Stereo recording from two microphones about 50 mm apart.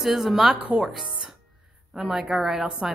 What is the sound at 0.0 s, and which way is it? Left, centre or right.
Speech, centre.